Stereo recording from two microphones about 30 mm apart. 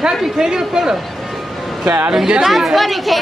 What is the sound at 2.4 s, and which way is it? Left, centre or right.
Speech, centre.